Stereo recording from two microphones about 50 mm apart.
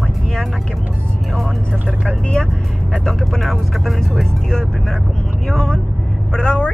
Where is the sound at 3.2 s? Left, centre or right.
Centre.